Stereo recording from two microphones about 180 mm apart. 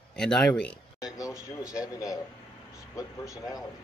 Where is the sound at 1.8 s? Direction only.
20° left (ahead or behind).